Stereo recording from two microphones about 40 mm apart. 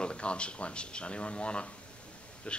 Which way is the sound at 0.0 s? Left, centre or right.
Left.